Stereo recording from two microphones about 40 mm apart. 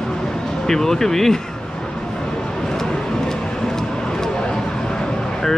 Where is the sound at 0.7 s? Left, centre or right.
Centre.